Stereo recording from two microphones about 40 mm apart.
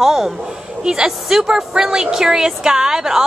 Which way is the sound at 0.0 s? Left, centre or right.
Centre.